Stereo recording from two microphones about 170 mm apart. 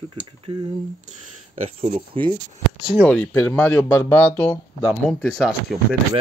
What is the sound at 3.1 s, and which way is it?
Speech, 10° left (ahead or behind).